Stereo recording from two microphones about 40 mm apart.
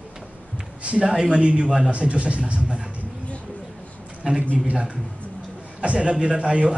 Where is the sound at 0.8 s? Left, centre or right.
Right.